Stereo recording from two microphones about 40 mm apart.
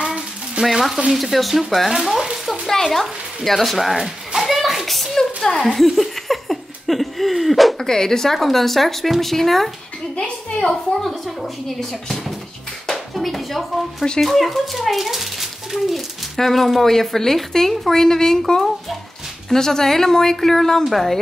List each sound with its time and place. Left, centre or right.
0.6 s stir: centre
1.1 s speech: centre
2.7 s speech: centre
4.5 s a sound: centre
7.8 s speech: centre
10.1 s a woman's voice: left
10.9 s speech: centre
12.8 s speech: centre
16.3 s speech: centre
19.5 s speech: centre